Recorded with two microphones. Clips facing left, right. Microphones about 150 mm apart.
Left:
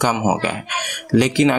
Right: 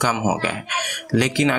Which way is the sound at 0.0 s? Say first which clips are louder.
Left 3 dB; 20° left (ahead or behind).